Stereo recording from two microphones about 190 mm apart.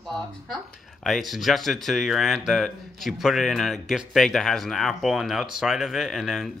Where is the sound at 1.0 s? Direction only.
Centre (ahead or behind).